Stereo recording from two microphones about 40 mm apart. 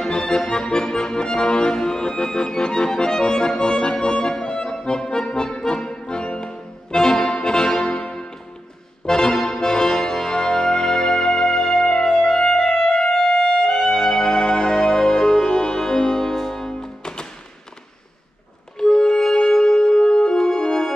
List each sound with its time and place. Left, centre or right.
0.1 s accordion: centre
9.0 s music: centre
18.8 s music: centre